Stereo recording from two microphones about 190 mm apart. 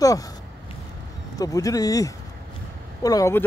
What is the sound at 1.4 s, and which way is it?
Speech, 20° left (ahead or behind).